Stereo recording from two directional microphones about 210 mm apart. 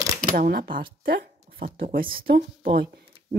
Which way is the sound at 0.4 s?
45° right (ahead or behind).